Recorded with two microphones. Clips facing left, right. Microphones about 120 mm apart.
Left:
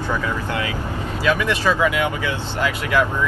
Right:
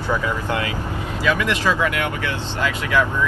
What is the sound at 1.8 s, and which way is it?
Speech, 15° left (ahead or behind).